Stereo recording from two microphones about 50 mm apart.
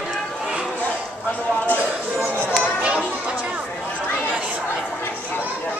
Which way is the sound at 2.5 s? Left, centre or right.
Right.